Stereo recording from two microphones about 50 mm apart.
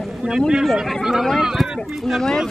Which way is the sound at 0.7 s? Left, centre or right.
Centre.